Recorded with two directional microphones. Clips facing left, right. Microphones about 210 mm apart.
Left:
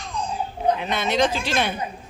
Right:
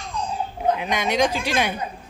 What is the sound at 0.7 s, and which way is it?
Speech, 10° right (ahead or behind).